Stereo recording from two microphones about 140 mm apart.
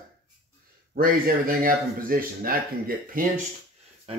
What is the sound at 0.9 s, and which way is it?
Speech, 90° right.